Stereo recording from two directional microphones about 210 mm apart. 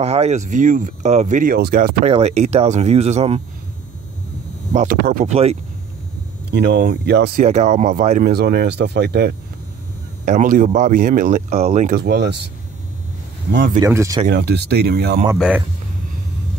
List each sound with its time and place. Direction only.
0.0 s speech: 30° right (ahead or behind)
2.0 s speech: 30° right (ahead or behind)
4.7 s speech: 40° right (ahead or behind)
5.3 s speech: 30° right (ahead or behind)
6.5 s speech: 50° right (ahead or behind)
7.4 s speech: 35° right (ahead or behind)
8.2 s speech: 55° right (ahead or behind)
10.2 s speech: 40° right (ahead or behind)
12.0 s speech: 55° right (ahead or behind)
13.7 s speech: 15° right (ahead or behind)
14.2 s speech: 50° right (ahead or behind)
15.3 s speech: 5° right (ahead or behind)